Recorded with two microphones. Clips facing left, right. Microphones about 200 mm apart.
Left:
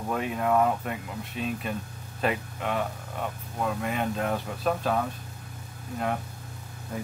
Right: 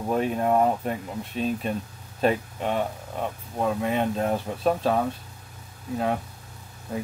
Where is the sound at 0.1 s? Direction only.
35° right (ahead or behind).